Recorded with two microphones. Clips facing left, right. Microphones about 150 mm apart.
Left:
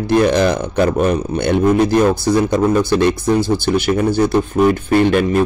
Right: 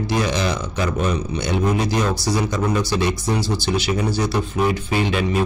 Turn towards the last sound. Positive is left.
turn(degrees=55)  # may be behind; listen again after turning